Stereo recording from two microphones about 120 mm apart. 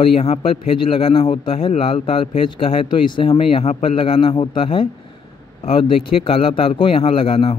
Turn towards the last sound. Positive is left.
turn(degrees=50)  # may be behind; listen again after turning